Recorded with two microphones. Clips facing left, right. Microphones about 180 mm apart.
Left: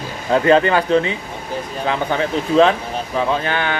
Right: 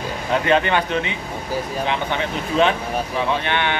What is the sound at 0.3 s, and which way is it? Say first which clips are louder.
Speech: left 5 dB; 35° left (ahead or behind).